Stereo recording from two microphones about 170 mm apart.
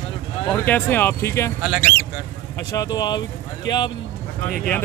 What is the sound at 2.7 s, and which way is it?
Speech, 20° left (ahead or behind).